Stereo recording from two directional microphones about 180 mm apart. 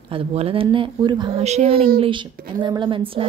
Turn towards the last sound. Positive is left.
turn(degrees=-30)  # may be behind; listen again after turning